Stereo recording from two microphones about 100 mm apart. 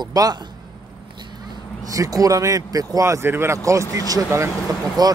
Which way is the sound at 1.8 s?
35° right (ahead or behind).